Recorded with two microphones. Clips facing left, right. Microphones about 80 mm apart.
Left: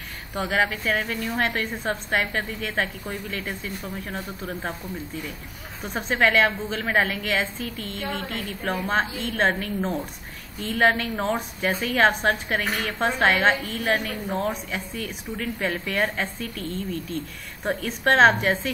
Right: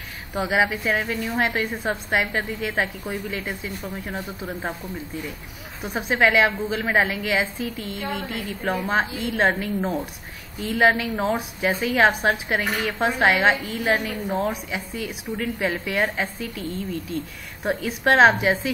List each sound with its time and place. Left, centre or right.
0.3 s a woman's voice: centre
5.8 s a woman's voice: centre
8.7 s a woman's voice: centre
9.8 s a woman's voice: centre
17.6 s a woman's voice: centre